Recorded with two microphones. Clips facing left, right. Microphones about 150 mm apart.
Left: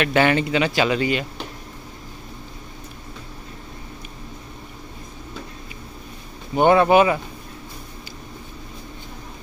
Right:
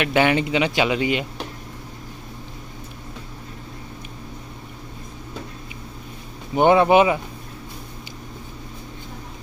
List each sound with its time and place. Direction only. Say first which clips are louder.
0.0 s speech: even; 15° right (ahead or behind)
6.5 s speech: even; 15° right (ahead or behind)